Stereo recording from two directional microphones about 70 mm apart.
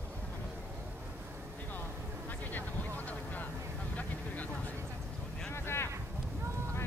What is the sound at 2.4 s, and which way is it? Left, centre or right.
Vehicle, left.